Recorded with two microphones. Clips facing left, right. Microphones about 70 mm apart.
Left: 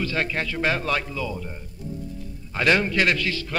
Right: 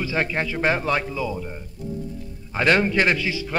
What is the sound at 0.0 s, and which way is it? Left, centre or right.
Speech, centre.